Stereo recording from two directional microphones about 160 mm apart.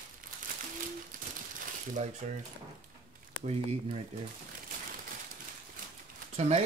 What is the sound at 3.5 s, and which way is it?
Speech, 40° right (ahead or behind).